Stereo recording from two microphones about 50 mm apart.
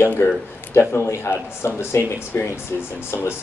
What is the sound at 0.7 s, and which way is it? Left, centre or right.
Speech, left.